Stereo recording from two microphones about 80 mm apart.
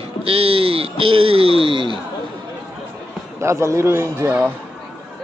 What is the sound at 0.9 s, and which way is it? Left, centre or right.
Speech, right.